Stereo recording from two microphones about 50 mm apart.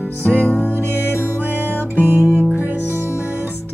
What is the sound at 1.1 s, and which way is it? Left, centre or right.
Music, right.